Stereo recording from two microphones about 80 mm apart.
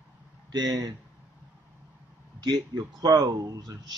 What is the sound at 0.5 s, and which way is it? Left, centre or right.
Speech, right.